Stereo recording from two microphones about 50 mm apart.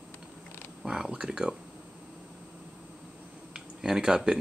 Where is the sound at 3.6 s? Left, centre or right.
Centre.